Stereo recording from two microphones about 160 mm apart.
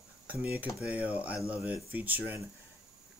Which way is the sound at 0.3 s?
10° right (ahead or behind).